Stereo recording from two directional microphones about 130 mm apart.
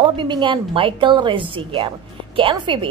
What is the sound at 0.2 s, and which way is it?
A woman's voice, 40° right (ahead or behind).